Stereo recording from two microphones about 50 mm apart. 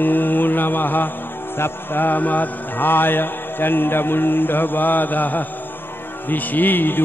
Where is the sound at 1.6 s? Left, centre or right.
Left.